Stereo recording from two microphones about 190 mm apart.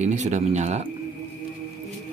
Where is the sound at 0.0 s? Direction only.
40° right (ahead or behind).